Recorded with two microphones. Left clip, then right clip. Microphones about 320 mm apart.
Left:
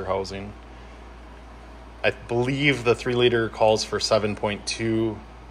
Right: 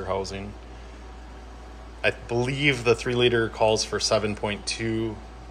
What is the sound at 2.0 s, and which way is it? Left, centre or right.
Speech, centre.